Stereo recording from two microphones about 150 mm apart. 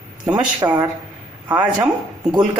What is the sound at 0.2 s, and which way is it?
A woman's voice, 10° right (ahead or behind).